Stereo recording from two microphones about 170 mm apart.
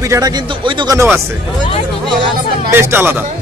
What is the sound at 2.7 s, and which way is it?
Speech, 15° right (ahead or behind).